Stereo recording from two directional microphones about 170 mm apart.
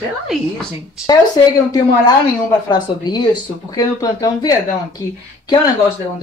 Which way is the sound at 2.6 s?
25° left (ahead or behind).